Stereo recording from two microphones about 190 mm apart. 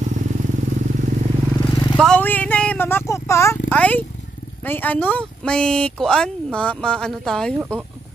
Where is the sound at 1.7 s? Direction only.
25° left (ahead or behind).